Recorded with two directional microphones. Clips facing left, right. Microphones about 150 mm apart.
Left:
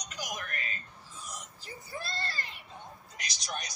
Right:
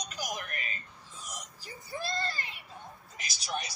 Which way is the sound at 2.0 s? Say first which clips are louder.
Right 6 dB; 15° right (ahead or behind).